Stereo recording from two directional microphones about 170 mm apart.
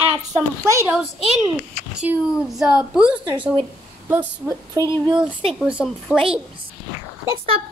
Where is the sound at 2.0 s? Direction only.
Centre (ahead or behind).